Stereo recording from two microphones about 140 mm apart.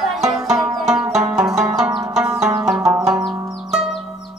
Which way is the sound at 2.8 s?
20° right (ahead or behind).